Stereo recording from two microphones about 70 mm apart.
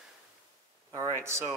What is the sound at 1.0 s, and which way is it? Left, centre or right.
Speech, right.